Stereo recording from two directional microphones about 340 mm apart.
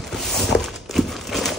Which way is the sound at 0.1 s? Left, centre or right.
Centre.